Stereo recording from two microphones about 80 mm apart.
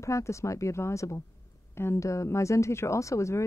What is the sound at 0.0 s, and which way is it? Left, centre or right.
Speech, left.